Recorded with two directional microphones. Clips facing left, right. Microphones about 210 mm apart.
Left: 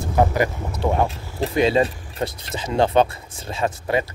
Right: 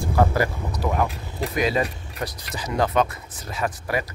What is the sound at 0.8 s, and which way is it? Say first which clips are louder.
Speech: left 4 dB; 30° left (ahead or behind).